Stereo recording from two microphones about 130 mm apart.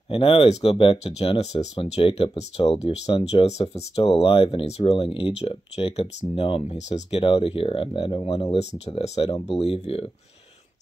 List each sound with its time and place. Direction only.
0.1 s speech: 45° left (ahead or behind)